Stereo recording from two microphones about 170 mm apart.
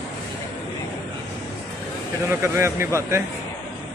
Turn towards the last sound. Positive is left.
turn(degrees=-15)  # may be behind; listen again after turning